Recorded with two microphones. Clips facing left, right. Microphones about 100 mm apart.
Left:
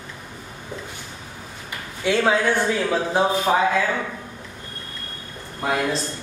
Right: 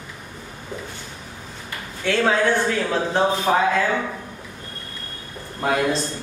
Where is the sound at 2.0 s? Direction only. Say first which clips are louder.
Even; 10° left (ahead or behind).